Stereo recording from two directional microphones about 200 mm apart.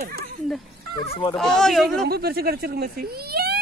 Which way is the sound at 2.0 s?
50° right (ahead or behind).